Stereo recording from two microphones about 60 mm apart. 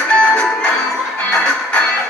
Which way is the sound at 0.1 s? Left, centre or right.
Centre.